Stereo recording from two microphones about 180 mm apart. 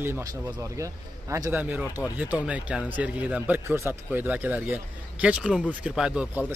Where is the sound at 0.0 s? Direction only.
15° right (ahead or behind).